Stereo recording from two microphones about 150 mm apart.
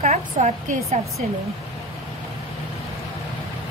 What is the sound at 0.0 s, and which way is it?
Speech, 50° right (ahead or behind).